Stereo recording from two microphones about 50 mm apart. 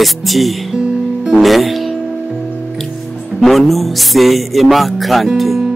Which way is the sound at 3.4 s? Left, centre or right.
Centre.